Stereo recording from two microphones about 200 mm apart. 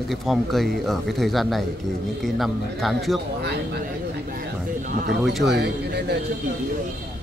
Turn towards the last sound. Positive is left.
turn(degrees=-55)  # may be behind; listen again after turning